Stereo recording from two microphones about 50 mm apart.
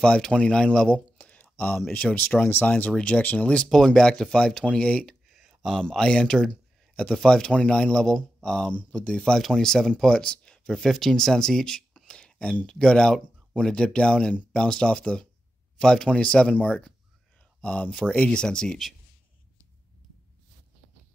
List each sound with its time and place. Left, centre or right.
0.0 s speech: centre
3.6 s speech: centre
5.3 s a sound: centre
5.6 s speech: centre
7.5 s speech: left
9.4 s speech: centre
12.1 s a sound: centre
12.6 s speech: centre